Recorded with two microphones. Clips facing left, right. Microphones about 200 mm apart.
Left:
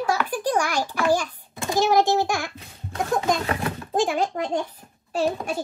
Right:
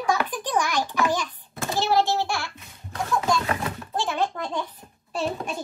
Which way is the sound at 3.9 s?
15° left (ahead or behind).